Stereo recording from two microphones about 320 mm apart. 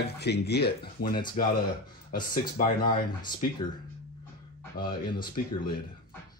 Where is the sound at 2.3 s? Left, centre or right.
Left.